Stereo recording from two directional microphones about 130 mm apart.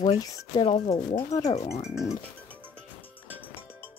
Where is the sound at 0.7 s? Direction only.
45° left (ahead or behind).